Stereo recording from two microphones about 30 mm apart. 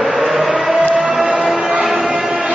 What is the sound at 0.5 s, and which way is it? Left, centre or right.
Music, right.